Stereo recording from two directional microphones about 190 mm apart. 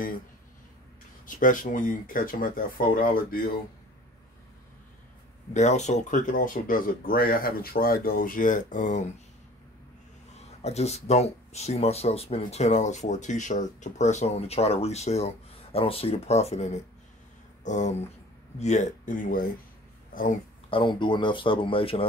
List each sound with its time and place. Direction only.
1.2 s speech: 45° left (ahead or behind)
5.5 s speech: 40° left (ahead or behind)
10.6 s speech: 35° left (ahead or behind)
20.7 s speech: 25° left (ahead or behind)